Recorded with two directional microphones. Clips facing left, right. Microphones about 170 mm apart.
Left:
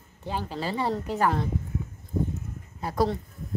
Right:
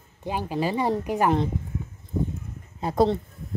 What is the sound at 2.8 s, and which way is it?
Speech, 25° right (ahead or behind).